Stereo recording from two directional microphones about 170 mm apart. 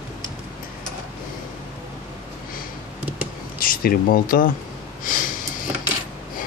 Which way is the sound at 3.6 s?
55° left (ahead or behind).